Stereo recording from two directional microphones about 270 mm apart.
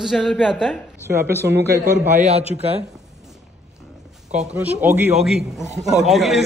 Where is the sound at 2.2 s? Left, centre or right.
Right.